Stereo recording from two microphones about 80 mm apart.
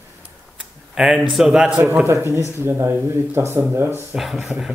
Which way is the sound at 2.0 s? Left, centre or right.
Right.